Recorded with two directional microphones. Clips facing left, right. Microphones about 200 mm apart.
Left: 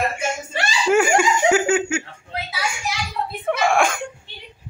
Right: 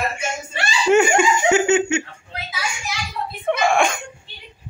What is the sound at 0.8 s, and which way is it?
Laughter, 5° left (ahead or behind).